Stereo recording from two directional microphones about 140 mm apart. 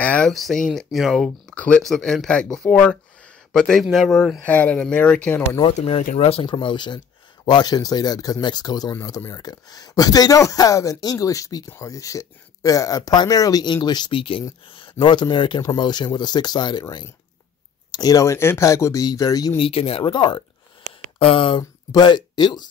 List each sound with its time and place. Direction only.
0.0 s speech: 5° left (ahead or behind)
5.8 s speech: 45° left (ahead or behind); by 19.5 s 25° left (ahead or behind)
19.5 s speech: 40° left (ahead or behind)